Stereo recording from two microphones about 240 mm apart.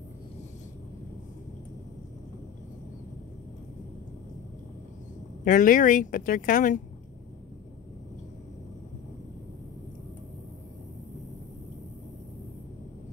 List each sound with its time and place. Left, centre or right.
5.4 s speech: left